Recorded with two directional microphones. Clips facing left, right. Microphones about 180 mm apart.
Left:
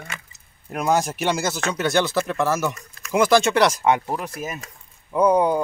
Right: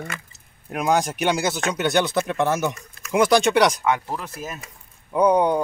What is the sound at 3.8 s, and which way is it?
Speech, 20° left (ahead or behind).